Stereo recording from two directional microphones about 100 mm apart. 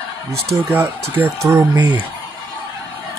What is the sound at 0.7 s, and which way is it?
Speech, 20° right (ahead or behind).